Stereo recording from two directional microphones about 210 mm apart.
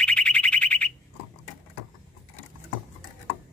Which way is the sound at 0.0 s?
5° left (ahead or behind).